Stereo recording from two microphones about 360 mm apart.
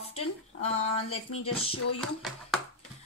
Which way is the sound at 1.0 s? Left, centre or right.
Left.